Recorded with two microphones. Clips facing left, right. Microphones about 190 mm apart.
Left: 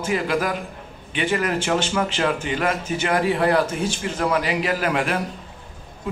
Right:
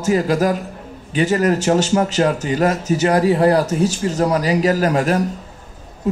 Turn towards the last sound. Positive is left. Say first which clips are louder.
# right 6 dB
turn(degrees=-40)  # may be behind; listen again after turning